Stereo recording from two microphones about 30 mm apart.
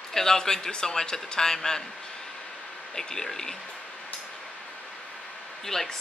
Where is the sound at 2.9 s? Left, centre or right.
Centre.